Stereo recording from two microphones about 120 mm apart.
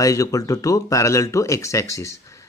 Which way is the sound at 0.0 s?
30° left (ahead or behind).